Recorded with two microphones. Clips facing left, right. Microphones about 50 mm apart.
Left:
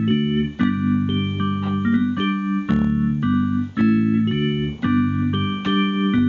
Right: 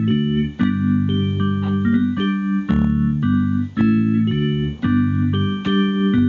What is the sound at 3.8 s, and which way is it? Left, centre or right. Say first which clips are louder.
Organ: right 1 dB; centre.